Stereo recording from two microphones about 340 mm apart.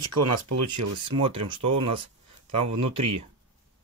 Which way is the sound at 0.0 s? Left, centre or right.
Right.